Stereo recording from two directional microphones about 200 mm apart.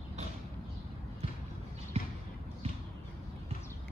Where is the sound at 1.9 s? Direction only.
30° right (ahead or behind).